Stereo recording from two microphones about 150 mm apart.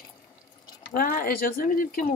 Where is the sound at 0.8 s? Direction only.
70° left (ahead or behind).